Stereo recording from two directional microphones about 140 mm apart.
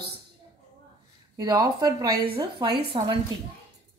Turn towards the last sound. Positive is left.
turn(degrees=-35)  # may be behind; listen again after turning